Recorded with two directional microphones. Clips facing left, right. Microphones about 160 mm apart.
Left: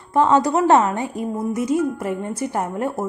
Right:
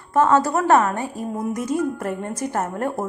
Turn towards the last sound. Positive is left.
turn(degrees=10)  # may be behind; listen again after turning